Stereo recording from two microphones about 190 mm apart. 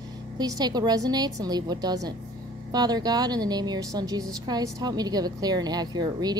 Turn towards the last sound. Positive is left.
turn(degrees=-20)  # may be behind; listen again after turning